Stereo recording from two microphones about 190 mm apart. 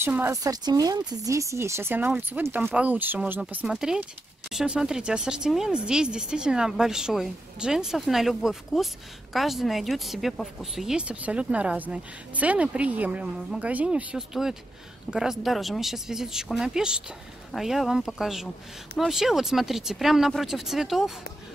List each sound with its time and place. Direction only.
0.0 s speech: 10° right (ahead or behind)